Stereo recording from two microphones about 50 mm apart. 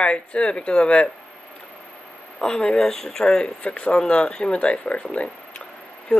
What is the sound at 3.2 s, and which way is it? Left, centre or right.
Speech, left.